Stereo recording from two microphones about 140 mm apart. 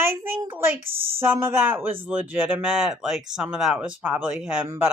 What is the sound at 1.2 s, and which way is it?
Speech, 15° right (ahead or behind).